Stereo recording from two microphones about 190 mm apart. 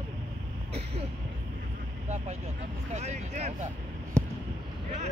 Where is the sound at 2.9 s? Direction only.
35° right (ahead or behind).